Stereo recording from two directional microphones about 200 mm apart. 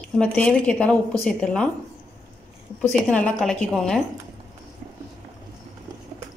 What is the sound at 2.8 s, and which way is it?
A woman's voice, 5° left (ahead or behind).